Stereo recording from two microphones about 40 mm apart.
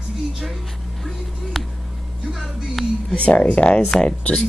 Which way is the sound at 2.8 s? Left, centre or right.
Centre.